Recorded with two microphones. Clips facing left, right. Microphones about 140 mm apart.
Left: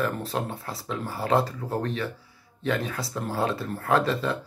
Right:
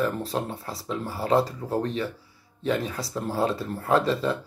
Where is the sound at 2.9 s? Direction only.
Centre (ahead or behind).